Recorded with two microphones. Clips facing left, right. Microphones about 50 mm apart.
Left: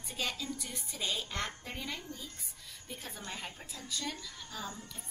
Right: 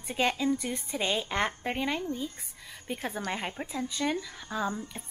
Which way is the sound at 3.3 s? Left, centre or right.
Right.